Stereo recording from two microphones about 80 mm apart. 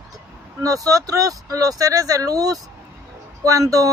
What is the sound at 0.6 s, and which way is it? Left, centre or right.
Speech, right.